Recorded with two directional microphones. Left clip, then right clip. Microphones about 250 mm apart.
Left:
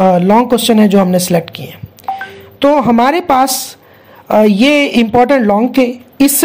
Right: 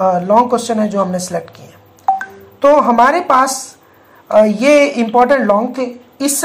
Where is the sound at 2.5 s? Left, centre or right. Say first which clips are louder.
Right 1 dB; left.